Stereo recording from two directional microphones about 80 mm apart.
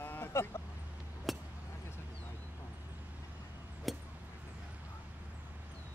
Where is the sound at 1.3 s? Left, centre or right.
Centre.